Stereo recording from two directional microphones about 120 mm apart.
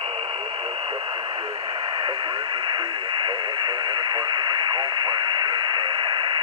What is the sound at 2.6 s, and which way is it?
Radio, 40° right (ahead or behind).